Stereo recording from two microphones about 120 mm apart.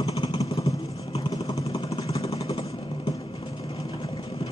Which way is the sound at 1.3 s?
35° left (ahead or behind).